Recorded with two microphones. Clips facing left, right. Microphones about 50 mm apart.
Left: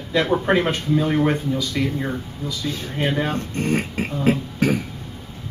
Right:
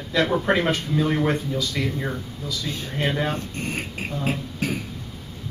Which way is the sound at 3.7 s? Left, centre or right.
Left.